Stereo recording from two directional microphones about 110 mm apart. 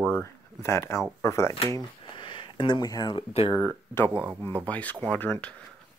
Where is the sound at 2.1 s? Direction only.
50° left (ahead or behind).